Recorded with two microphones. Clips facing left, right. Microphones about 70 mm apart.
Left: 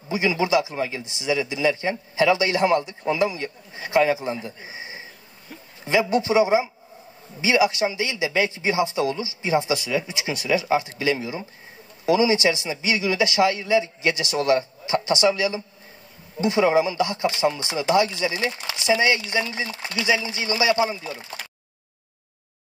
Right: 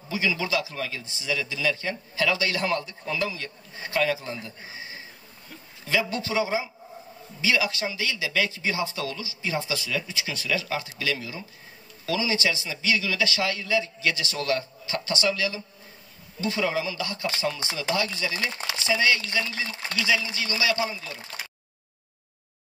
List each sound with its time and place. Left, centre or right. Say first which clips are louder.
0.1 s speech: left 6 dB; left